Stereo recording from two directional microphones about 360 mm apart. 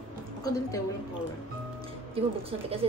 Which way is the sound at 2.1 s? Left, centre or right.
Centre.